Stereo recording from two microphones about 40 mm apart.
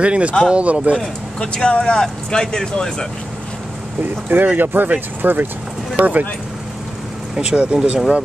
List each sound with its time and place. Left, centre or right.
0.0 s speech: right
1.4 s speech: left
4.3 s speech: right
5.9 s speech: right
7.3 s speech: right